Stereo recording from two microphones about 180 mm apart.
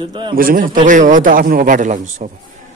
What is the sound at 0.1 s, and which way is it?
Speech, 25° right (ahead or behind).